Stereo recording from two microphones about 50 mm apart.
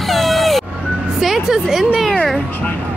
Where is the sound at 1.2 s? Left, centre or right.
Centre.